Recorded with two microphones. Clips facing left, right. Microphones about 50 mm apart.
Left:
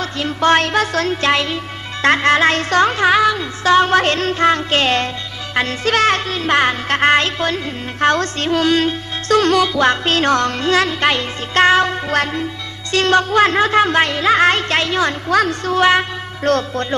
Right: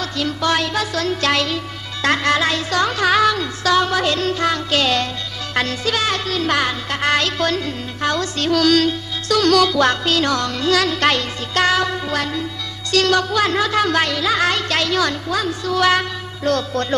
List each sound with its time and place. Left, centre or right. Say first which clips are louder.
0.0 s music: left 4 dB; left
1.2 s music: left 2 dB; left
3.1 s speech: left 2 dB; centre
3.6 s music: left 5 dB; left
8.0 s music: left 5 dB; left
8.5 s music: right 1 dB; left
10.0 s music: left 3 dB; left
11.0 s music: left 1 dB; centre
11.5 s music: left 5 dB; left
15.2 s a woman's voice: left 5 dB; left
15.8 s music: left 3 dB; left
16.5 s a woman's voice: left 3 dB; left